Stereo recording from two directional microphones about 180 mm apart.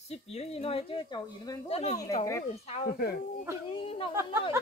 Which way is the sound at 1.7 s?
35° left (ahead or behind).